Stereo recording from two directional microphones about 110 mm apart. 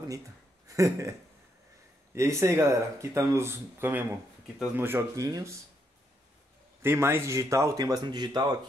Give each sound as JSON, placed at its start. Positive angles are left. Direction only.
{"t": 0.7, "sound": "speech", "side_deg": -30}
{"t": 2.1, "sound": "speech", "side_deg": -25}
{"t": 6.8, "sound": "speech", "side_deg": -20}